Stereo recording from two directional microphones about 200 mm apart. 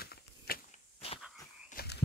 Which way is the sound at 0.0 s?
50° left (ahead or behind).